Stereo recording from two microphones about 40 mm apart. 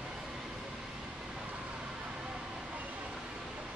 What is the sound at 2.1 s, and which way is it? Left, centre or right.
Vehicle, centre.